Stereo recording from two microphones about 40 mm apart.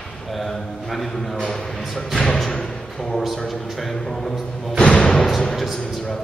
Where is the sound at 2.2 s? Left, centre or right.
Centre.